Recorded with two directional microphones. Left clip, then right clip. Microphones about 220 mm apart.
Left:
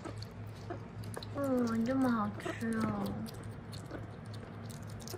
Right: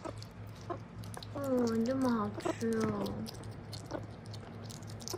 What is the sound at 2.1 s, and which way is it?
Speech, 20° right (ahead or behind).